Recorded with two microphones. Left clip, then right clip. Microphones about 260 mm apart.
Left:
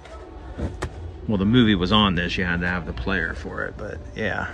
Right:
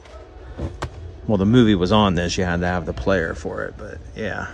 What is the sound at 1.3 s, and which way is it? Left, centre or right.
Speech, right.